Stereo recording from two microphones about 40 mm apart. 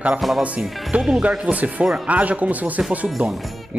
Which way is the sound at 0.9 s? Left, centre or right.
Centre.